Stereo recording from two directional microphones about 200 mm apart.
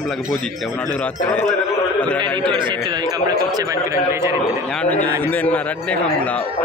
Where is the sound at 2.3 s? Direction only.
25° right (ahead or behind).